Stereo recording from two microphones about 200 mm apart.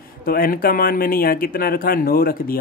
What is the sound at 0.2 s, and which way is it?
Speech, 45° left (ahead or behind).